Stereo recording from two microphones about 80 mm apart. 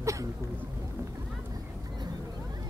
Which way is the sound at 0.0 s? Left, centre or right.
Right.